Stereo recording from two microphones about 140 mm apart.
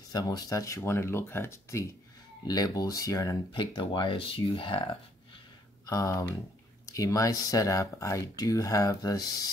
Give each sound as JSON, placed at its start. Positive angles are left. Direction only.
{"t": 0.1, "sound": "speech", "side_deg": 25}
{"t": 3.7, "sound": "speech", "side_deg": 35}
{"t": 5.9, "sound": "speech", "side_deg": 25}